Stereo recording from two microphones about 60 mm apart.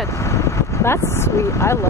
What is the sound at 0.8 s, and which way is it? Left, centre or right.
Speech, left.